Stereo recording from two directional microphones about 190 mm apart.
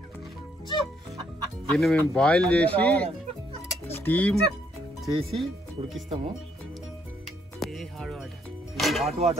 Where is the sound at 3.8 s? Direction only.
10° left (ahead or behind).